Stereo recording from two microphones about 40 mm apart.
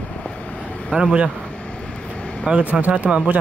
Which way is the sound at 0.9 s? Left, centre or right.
Right.